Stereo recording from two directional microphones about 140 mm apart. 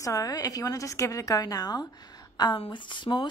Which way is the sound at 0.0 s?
25° left (ahead or behind).